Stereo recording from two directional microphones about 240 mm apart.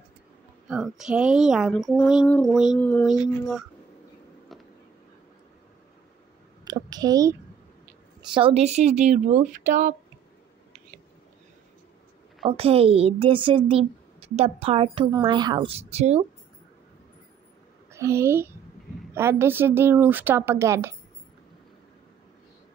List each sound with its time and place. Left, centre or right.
0.7 s speech: centre
4.5 s a sound: centre
6.6 s a woman's voice: centre; by 9.9 s right
12.4 s a woman's voice: right
17.9 s speech: centre